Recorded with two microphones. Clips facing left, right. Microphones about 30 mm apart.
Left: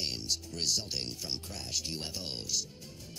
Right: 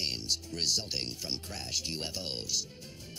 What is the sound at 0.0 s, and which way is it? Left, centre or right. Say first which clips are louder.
Speech: right 1 dB; right.